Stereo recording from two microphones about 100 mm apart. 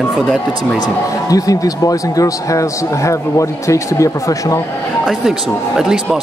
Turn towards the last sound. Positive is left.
turn(degrees=35)  # may be behind; listen again after turning